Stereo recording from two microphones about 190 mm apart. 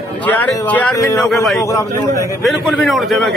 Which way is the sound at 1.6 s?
15° left (ahead or behind).